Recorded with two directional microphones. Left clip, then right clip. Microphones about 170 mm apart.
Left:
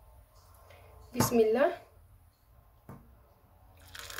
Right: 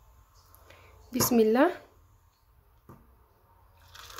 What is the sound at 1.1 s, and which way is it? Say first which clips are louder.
Speech: right 2 dB; 55° right (ahead or behind).